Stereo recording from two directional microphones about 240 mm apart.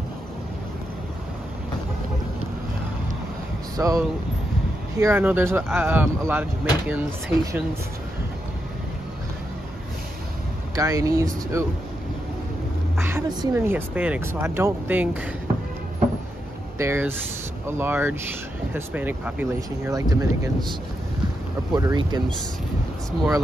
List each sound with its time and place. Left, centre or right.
3.7 s speech: centre
10.8 s speech: centre
13.0 s speech: centre
16.7 s speech: centre
21.7 s speech: centre